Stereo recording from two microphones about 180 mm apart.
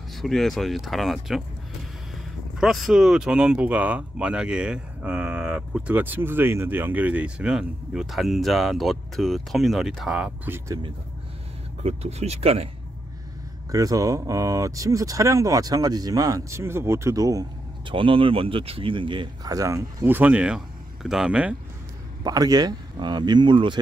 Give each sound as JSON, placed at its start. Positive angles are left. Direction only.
{"t": 0.1, "sound": "speech", "side_deg": 0}
{"t": 2.6, "sound": "speech", "side_deg": 0}
{"t": 11.8, "sound": "speech", "side_deg": -35}
{"t": 13.7, "sound": "speech", "side_deg": -20}
{"t": 22.2, "sound": "speech", "side_deg": -20}